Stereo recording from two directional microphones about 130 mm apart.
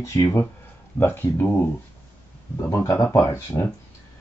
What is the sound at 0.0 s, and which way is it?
Speech, 25° left (ahead or behind).